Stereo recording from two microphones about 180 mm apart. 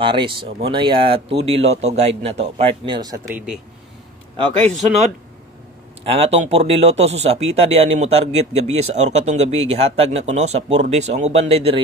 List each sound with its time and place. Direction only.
0.0 s speech: 25° right (ahead or behind)
4.6 s a man's voice: 5° left (ahead or behind)
6.0 s speech: 35° right (ahead or behind)